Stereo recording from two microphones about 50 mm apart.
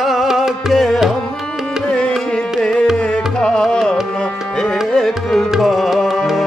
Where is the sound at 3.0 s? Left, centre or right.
Left.